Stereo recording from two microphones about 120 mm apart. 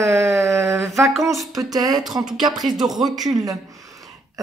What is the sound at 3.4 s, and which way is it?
Speech, 30° right (ahead or behind).